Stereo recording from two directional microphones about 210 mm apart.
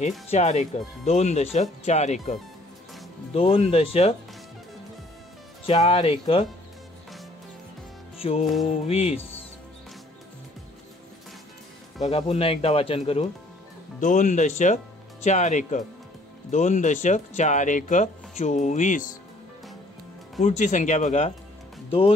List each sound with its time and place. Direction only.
0.3 s speech: 30° left (ahead or behind)
3.3 s speech: 30° left (ahead or behind)
5.7 s speech: 25° left (ahead or behind)
8.2 s music: 30° left (ahead or behind)
8.8 s speech: 30° left (ahead or behind)
12.0 s speech: 30° left (ahead or behind)
20.3 s speech: 35° left (ahead or behind)